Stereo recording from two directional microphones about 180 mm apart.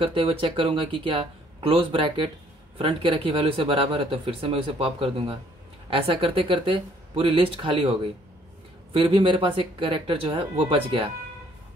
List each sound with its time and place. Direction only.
0.0 s speech: 30° right (ahead or behind)